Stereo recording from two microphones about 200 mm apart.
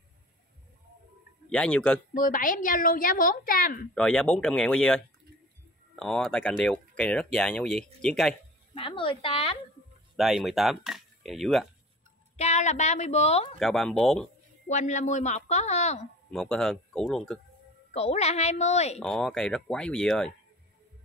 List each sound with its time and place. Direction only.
1.5 s speech: 5° left (ahead or behind)
2.1 s a woman's voice: 45° left (ahead or behind)
3.9 s speech: 5° left (ahead or behind)
8.7 s a woman's voice: 25° left (ahead or behind)
10.1 s speech: centre (ahead or behind)
12.4 s speech: 35° left (ahead or behind)
13.6 s speech: centre (ahead or behind)
14.7 s speech: 35° left (ahead or behind)
16.3 s speech: 5° left (ahead or behind)
17.9 s speech: 35° left (ahead or behind)
18.9 s speech: centre (ahead or behind)